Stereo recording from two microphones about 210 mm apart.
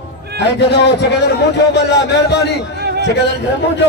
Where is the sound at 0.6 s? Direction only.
55° left (ahead or behind).